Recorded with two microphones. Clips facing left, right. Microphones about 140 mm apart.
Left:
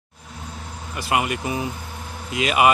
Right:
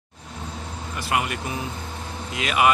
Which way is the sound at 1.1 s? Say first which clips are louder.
Left 3 dB; 15° left (ahead or behind).